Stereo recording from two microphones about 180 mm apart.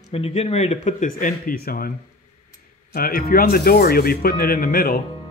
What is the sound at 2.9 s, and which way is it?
Speech, 55° left (ahead or behind).